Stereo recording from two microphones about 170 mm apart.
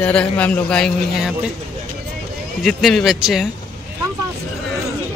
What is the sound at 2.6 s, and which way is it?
Speech, centre (ahead or behind).